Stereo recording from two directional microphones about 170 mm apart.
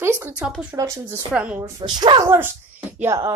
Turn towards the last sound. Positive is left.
turn(degrees=-15)  # may be behind; listen again after turning